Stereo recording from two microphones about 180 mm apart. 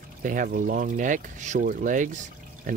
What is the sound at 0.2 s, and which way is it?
Speech, 45° right (ahead or behind).